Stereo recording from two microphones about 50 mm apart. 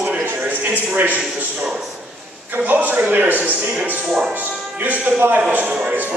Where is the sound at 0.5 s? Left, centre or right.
Right.